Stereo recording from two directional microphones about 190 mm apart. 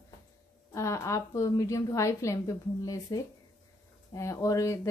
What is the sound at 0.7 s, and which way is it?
A woman's voice, 15° left (ahead or behind).